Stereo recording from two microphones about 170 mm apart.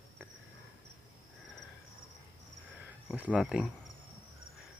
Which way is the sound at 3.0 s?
5° right (ahead or behind).